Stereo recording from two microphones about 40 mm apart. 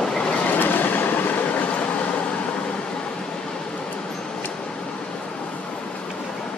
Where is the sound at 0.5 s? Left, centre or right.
Left.